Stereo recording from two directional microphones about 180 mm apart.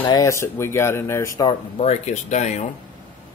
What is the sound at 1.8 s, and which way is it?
Speech, 40° left (ahead or behind).